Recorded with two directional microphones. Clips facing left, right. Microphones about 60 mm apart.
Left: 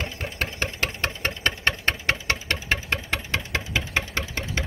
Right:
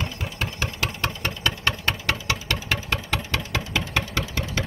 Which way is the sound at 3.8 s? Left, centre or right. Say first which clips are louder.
Right 1 dB; centre.